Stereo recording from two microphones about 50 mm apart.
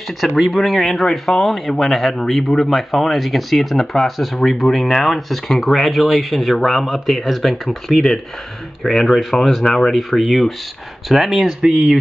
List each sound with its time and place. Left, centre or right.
0.4 s speech: centre